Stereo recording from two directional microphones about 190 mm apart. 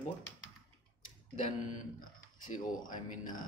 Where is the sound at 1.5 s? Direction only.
40° left (ahead or behind).